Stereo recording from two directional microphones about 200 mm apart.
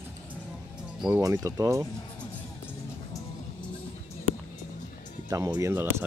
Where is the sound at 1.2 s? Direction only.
15° right (ahead or behind).